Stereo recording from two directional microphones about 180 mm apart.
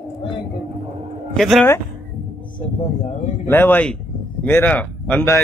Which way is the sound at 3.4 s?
10° left (ahead or behind).